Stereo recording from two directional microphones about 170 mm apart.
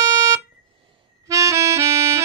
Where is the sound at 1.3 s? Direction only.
20° right (ahead or behind).